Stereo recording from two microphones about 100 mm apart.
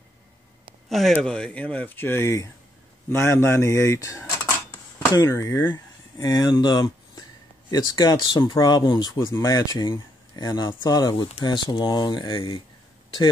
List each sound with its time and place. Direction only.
0.8 s speech: centre (ahead or behind); by 12.3 s 45° left (ahead or behind)
12.3 s speech: 60° left (ahead or behind)